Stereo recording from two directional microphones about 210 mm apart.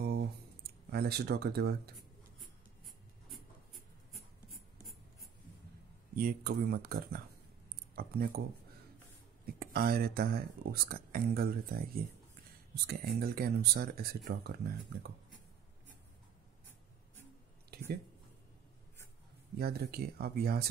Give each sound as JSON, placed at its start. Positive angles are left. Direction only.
{"t": 0.0, "sound": "a sound", "side_deg": -50}
{"t": 0.9, "sound": "speech", "side_deg": -50}
{"t": 6.1, "sound": "speech", "side_deg": -45}
{"t": 9.6, "sound": "speech", "side_deg": -45}
{"t": 17.7, "sound": "a sound", "side_deg": -50}
{"t": 19.5, "sound": "speech", "side_deg": -45}